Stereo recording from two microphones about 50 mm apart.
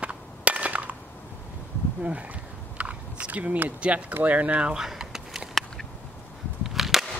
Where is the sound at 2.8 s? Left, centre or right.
Right.